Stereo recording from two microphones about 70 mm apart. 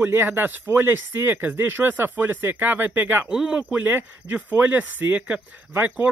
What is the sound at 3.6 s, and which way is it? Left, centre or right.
Speech, right.